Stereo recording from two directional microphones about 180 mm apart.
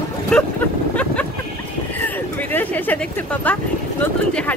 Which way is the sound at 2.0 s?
10° left (ahead or behind).